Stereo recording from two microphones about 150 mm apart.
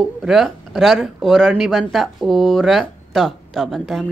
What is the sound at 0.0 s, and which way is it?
Speech, centre (ahead or behind).